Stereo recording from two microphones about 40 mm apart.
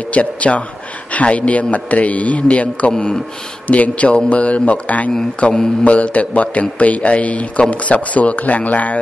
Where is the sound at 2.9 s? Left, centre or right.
Left.